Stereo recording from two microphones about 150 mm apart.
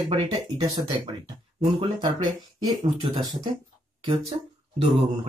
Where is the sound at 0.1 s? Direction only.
35° right (ahead or behind).